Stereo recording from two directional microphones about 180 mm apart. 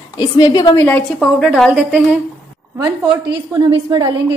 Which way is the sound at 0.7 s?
10° left (ahead or behind).